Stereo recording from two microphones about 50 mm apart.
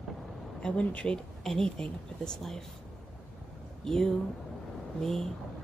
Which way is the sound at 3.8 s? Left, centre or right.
Centre.